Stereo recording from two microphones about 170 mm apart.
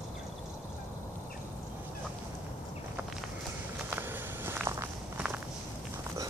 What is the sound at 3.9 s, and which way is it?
Walk, 10° right (ahead or behind).